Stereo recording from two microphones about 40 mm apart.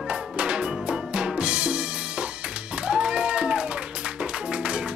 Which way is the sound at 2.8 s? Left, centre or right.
Right.